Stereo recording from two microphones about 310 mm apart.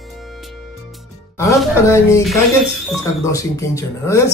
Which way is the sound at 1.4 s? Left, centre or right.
Centre.